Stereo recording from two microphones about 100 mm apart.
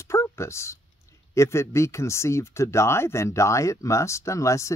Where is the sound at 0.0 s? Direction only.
30° left (ahead or behind).